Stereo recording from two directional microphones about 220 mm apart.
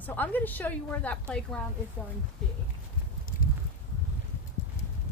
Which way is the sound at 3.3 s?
40° left (ahead or behind).